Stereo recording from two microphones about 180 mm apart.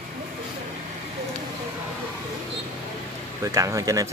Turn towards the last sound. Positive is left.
turn(degrees=-15)  # may be behind; listen again after turning